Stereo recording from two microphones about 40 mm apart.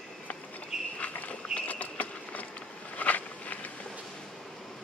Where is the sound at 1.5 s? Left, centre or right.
Left.